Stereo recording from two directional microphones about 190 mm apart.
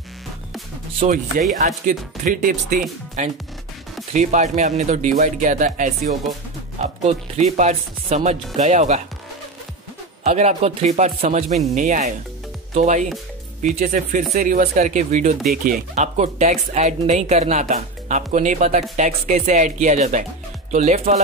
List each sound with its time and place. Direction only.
0.9 s speech: 40° right (ahead or behind)
10.2 s speech: 35° right (ahead or behind)